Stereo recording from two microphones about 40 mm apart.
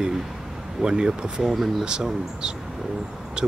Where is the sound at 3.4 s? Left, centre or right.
Centre.